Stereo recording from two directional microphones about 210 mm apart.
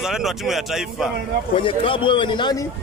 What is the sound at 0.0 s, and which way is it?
Speech, centre (ahead or behind).